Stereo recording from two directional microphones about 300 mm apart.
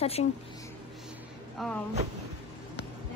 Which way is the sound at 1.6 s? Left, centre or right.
Centre.